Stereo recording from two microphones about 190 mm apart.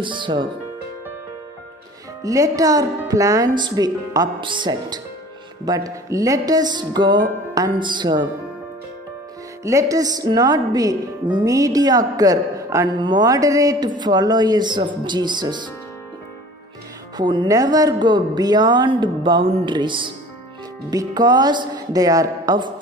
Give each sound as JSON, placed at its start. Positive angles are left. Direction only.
{"t": 0.0, "sound": "a woman's voice", "side_deg": -25}
{"t": 2.2, "sound": "a woman's voice", "side_deg": -15}
{"t": 9.6, "sound": "a woman's voice", "side_deg": -15}
{"t": 17.2, "sound": "a woman's voice", "side_deg": -25}